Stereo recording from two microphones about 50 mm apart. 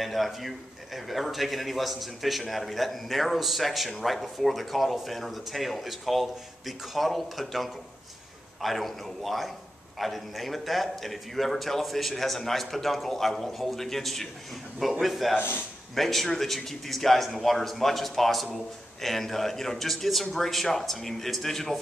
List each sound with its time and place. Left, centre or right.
0.0 s a man's voice: centre
15.3 s speech: left
15.9 s a man's voice: centre